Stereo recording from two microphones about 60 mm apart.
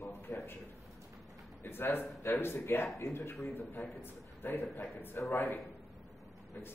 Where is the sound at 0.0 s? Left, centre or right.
Left.